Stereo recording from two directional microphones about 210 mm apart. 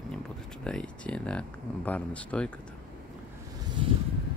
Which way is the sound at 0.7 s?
5° left (ahead or behind).